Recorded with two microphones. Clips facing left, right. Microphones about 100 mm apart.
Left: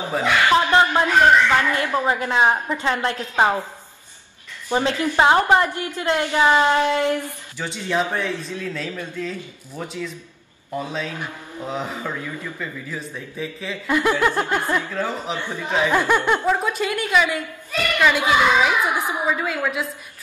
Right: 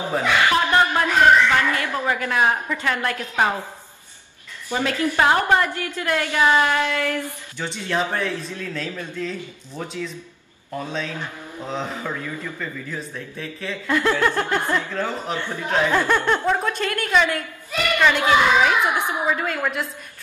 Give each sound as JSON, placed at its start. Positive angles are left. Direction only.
{"t": 0.2, "sound": "a sound", "side_deg": 20}
{"t": 1.6, "sound": "a woman's voice", "side_deg": 25}
{"t": 4.6, "sound": "a woman's voice", "side_deg": 20}
{"t": 7.5, "sound": "a man's voice", "side_deg": 5}
{"t": 13.8, "sound": "a man's voice", "side_deg": 15}